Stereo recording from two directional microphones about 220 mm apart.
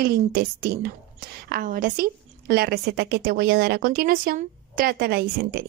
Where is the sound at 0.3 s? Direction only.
45° right (ahead or behind).